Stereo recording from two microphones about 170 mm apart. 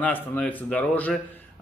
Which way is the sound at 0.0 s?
10° left (ahead or behind).